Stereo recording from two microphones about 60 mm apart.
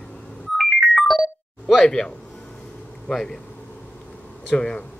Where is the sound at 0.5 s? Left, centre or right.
Centre.